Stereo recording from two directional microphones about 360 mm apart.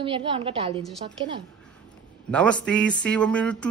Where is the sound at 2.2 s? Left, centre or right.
Centre.